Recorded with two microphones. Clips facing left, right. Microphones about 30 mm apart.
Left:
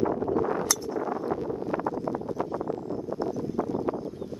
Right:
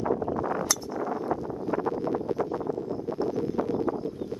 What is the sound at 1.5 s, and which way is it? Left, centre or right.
Wind noise, centre.